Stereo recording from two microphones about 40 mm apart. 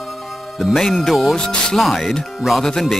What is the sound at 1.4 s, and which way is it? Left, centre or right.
Speech, centre.